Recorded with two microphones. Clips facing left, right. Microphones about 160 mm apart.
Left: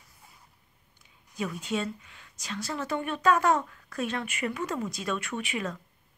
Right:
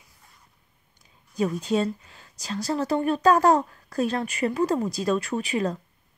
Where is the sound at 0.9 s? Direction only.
35° right (ahead or behind).